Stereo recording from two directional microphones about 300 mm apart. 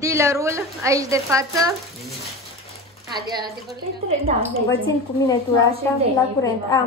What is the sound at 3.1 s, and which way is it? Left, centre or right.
Speech, right.